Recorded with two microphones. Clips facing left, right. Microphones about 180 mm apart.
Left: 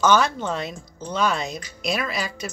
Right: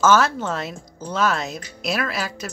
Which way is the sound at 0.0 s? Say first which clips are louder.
Right 2 dB; 5° right (ahead or behind).